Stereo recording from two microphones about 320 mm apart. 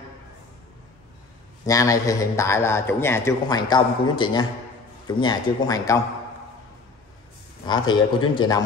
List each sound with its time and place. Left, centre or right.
1.7 s a man's voice: centre
7.6 s a man's voice: centre